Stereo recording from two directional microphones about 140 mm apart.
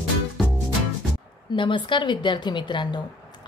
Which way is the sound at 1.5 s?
35° left (ahead or behind).